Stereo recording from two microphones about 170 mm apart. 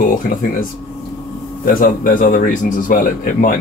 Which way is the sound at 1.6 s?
60° left (ahead or behind).